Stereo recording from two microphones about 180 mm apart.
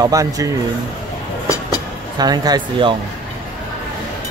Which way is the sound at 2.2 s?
20° right (ahead or behind).